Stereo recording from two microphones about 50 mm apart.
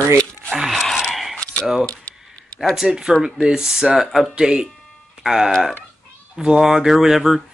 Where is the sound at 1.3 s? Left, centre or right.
Left.